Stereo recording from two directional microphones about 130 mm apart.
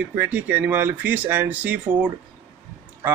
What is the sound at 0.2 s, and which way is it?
A man's voice, 10° right (ahead or behind).